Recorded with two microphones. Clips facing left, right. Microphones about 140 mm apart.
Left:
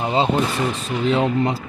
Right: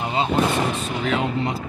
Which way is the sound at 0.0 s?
30° left (ahead or behind).